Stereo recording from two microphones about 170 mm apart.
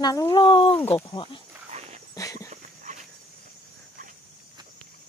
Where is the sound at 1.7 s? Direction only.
40° right (ahead or behind).